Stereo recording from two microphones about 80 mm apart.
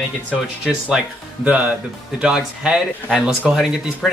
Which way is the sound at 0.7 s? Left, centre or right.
Centre.